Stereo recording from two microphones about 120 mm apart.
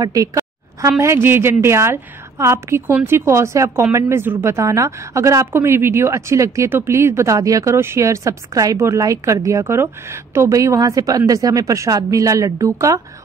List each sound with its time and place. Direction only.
0.0 s a woman's voice: 30° right (ahead or behind)